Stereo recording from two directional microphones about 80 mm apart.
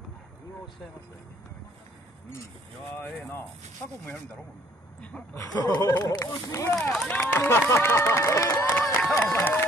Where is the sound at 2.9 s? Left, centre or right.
Left.